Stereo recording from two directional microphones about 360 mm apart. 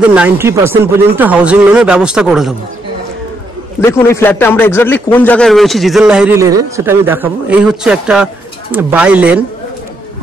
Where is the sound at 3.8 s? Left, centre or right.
Centre.